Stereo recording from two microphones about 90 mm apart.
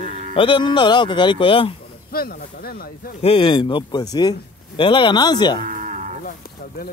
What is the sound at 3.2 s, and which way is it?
Speech, 85° left.